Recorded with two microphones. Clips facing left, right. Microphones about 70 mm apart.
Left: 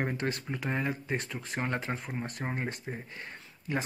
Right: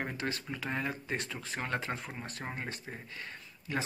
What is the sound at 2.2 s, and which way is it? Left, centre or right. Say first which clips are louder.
Speech: left 5 dB; centre.